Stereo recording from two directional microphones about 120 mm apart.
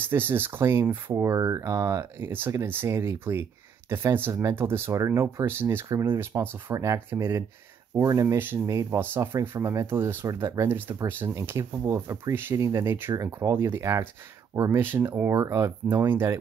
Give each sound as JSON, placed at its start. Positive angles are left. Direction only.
{"t": 0.0, "sound": "speech", "side_deg": -20}
{"t": 13.1, "sound": "speech", "side_deg": -30}